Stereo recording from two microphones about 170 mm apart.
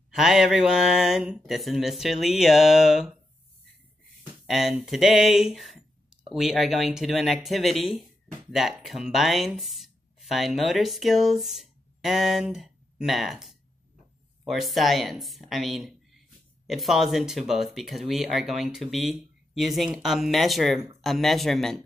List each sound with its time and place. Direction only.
0.1 s speech: centre (ahead or behind)
4.5 s speech: centre (ahead or behind)